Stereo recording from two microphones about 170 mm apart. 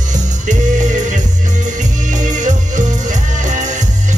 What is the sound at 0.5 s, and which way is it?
Music, 45° right (ahead or behind).